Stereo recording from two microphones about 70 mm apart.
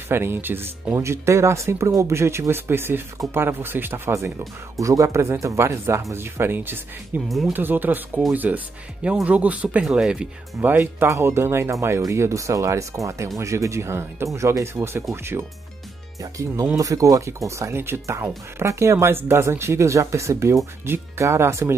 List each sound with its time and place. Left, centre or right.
0.1 s speech: right
0.9 s speech: right
4.7 s speech: right
7.2 s speech: centre
7.5 s speech: right; by 10.2 s centre
10.6 s speech: right
11.1 s speech: right
16.2 s speech: right